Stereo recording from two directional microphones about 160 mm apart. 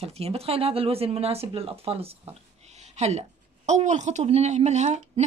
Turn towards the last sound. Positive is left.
turn(degrees=-45)  # may be behind; listen again after turning